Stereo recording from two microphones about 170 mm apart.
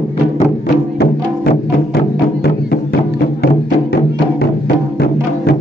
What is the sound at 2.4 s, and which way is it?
Music, 65° left (ahead or behind).